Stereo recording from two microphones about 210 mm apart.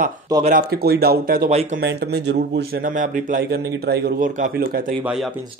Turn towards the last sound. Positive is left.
turn(degrees=0)  # may be behind; listen again after turning